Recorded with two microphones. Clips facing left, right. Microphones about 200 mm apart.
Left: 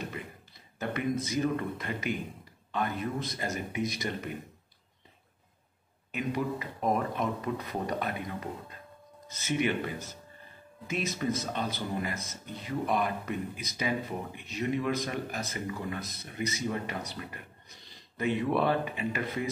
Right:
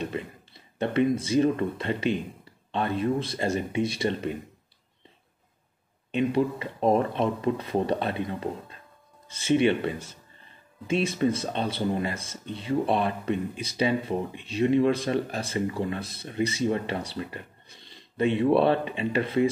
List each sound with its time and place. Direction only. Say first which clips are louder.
0.0 s speech: right 7 dB; 25° right (ahead or behind)
6.1 s speech: right 7 dB; 25° right (ahead or behind)